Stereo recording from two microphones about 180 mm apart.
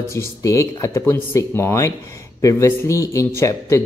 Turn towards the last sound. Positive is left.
turn(degrees=15)  # may be behind; listen again after turning